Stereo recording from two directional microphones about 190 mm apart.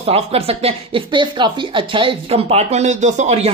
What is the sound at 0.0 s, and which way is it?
Speech, 30° right (ahead or behind).